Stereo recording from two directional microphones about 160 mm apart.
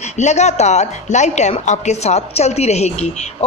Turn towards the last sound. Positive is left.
turn(degrees=45)  # may be behind; listen again after turning